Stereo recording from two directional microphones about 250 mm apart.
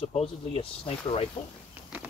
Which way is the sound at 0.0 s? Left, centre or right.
Left.